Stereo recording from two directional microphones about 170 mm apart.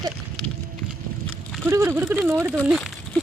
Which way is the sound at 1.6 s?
15° right (ahead or behind).